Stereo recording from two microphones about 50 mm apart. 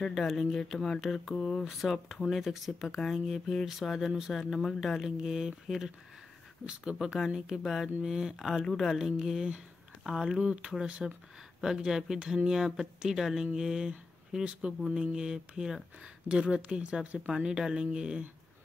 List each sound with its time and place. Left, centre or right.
0.3 s speech: centre
8.6 s speech: centre
9.2 s speech: centre
11.0 s speech: centre